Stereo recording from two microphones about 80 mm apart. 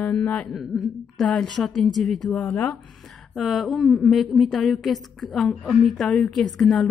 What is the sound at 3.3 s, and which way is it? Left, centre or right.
A woman's voice, centre.